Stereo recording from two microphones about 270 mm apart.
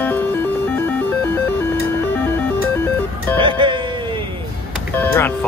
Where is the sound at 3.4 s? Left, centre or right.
Centre.